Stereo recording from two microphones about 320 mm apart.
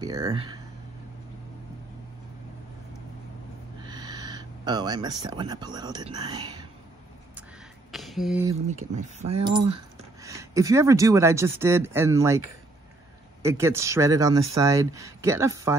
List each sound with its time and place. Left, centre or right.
0.0 s speech: centre
3.8 s speech: centre
7.9 s a sound: centre
8.6 s speech: right